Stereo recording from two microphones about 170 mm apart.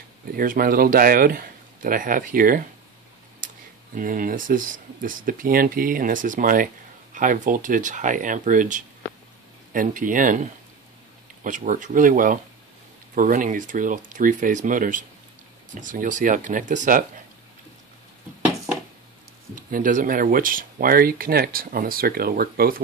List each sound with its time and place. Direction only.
0.4 s speech: 55° right (ahead or behind)
3.9 s speech: 55° right (ahead or behind)
19.5 s speech: 50° right (ahead or behind)